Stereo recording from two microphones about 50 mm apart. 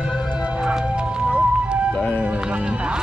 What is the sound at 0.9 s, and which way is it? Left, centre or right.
Music, right.